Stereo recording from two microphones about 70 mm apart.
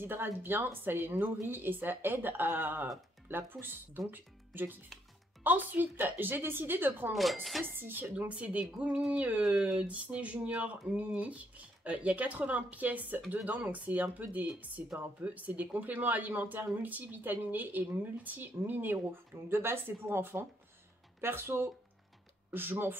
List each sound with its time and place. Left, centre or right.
0.0 s speech: right
7.1 s speech: centre
7.7 s speech: right